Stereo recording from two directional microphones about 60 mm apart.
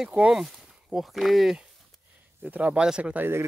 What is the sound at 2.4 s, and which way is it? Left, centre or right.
Speech, right.